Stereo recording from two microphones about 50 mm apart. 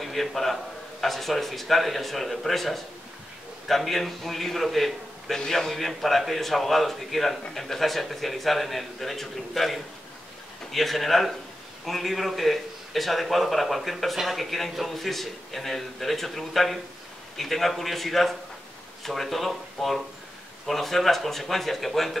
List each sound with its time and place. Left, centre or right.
0.0 s a man's voice: centre